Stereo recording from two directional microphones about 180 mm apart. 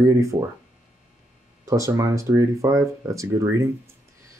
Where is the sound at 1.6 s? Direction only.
15° right (ahead or behind).